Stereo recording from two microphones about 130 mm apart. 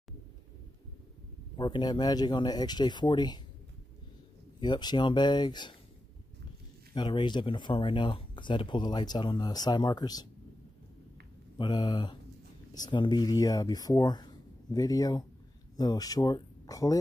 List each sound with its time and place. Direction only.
1.6 s speech: 35° left (ahead or behind)
4.6 s speech: 35° left (ahead or behind)
6.9 s speech: 35° left (ahead or behind)
11.5 s speech: 35° left (ahead or behind)